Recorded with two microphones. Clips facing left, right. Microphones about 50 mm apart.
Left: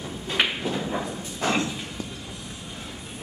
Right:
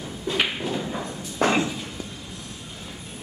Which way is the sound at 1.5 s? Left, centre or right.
Centre.